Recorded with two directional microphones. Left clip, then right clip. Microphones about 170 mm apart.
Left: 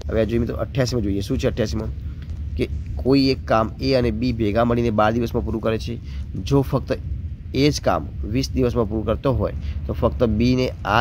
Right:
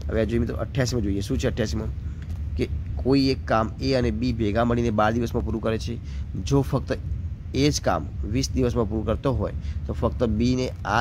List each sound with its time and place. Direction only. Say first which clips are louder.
0.1 s speech: left 4 dB; 20° left (ahead or behind)